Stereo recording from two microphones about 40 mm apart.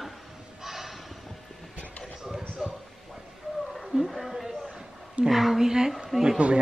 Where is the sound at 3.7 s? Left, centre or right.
Centre.